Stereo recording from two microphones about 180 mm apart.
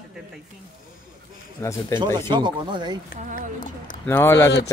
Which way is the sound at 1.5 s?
15° left (ahead or behind).